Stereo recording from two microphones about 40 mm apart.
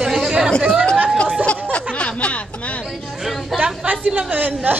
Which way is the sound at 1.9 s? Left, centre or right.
Left.